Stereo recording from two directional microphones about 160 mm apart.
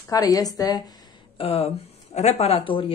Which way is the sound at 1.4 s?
40° left (ahead or behind).